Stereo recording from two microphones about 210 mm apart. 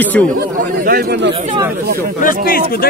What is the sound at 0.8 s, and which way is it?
Speech, 45° right (ahead or behind).